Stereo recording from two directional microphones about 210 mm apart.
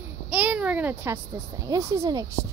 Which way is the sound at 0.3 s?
5° right (ahead or behind).